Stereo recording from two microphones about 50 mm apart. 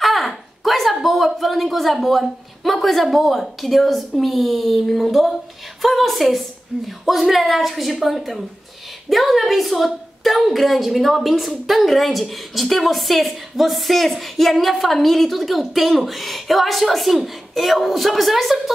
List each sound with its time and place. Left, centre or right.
0.0 s a woman's voice: centre
6.7 s speech: centre
7.1 s a woman's voice: centre